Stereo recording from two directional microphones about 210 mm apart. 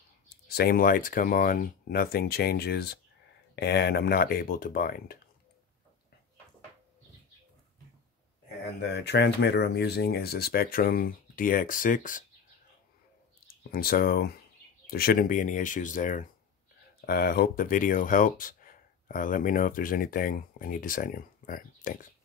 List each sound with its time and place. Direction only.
0.5 s speech: 45° left (ahead or behind)
8.8 s speech: 55° left (ahead or behind)
13.5 s speech: 45° left (ahead or behind)